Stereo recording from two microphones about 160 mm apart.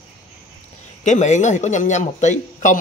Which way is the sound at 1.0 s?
50° left (ahead or behind).